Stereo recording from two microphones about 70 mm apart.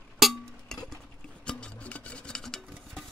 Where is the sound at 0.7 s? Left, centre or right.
Centre.